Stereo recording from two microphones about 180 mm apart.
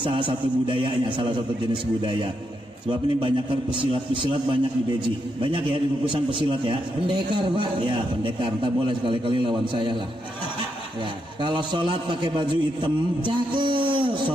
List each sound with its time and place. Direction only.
0.3 s a man's voice: 25° right (ahead or behind)
11.4 s a man's voice: 25° right (ahead or behind)